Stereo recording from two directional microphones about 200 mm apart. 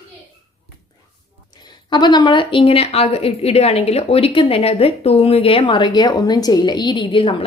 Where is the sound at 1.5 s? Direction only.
20° left (ahead or behind).